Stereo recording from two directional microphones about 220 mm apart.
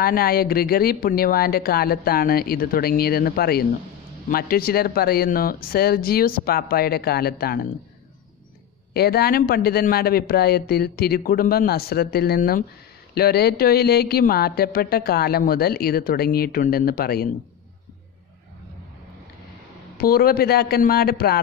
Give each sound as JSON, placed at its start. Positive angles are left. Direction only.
{"t": 0.0, "sound": "a woman's voice", "side_deg": 45}
{"t": 8.9, "sound": "a woman's voice", "side_deg": 45}
{"t": 20.0, "sound": "a woman's voice", "side_deg": 45}